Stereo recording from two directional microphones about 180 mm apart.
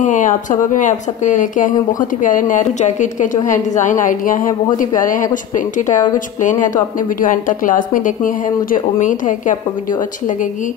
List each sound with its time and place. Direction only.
0.0 s speech: 45° left (ahead or behind)